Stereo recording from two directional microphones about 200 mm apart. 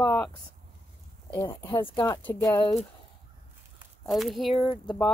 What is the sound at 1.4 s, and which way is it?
Speech, 25° left (ahead or behind).